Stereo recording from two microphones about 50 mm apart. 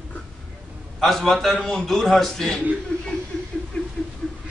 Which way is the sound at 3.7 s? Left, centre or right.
Centre.